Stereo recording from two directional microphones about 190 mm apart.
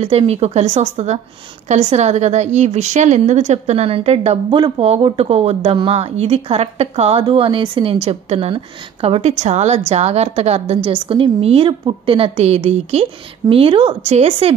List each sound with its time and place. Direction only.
0.0 s a woman's voice: 30° right (ahead or behind)